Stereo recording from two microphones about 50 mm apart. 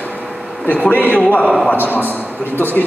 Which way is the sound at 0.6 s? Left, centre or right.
Left.